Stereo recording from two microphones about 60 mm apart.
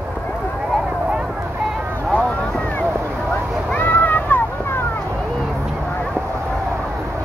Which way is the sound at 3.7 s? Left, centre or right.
Left.